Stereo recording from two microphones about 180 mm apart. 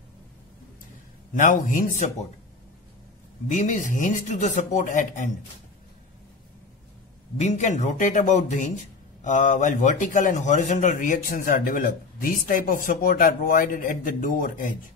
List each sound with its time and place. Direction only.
1.3 s speech: 45° left (ahead or behind)
3.4 s speech: 45° left (ahead or behind)
7.3 s speech: 40° left (ahead or behind)